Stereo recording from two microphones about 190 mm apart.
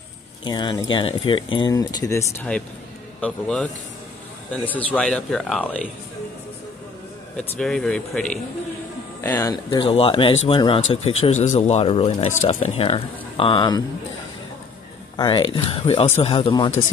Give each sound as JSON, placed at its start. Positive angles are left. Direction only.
{"t": 0.4, "sound": "speech", "side_deg": 25}
{"t": 4.6, "sound": "speech", "side_deg": 5}
{"t": 7.3, "sound": "speech", "side_deg": 5}
{"t": 9.2, "sound": "speech", "side_deg": 20}
{"t": 15.1, "sound": "speech", "side_deg": 25}